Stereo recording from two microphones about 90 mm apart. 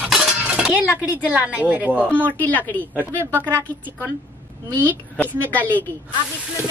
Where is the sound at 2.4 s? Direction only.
20° left (ahead or behind).